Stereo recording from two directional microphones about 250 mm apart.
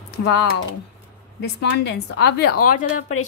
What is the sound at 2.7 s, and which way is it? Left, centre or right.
Speech, left.